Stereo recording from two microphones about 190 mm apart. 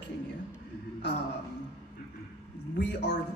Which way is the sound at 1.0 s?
65° left (ahead or behind).